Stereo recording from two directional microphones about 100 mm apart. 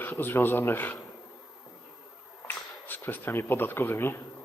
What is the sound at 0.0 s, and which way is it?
Speech, 20° left (ahead or behind).